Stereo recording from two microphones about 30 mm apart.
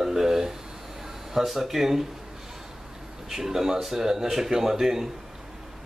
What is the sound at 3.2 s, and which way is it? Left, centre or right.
A man's voice, centre.